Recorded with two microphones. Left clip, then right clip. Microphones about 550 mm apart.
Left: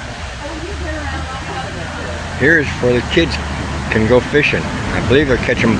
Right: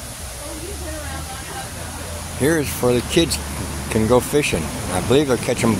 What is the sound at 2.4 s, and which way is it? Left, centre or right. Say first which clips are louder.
Speech: left 6 dB; right.